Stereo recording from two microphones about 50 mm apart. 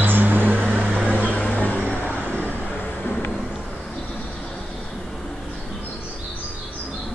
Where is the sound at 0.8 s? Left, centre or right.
Centre.